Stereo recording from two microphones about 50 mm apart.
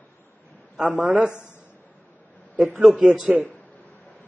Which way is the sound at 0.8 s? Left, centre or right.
Right.